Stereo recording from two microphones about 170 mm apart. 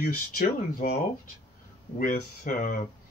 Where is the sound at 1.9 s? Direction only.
50° left (ahead or behind).